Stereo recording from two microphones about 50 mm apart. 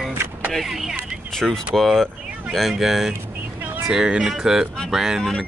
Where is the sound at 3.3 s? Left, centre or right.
Right.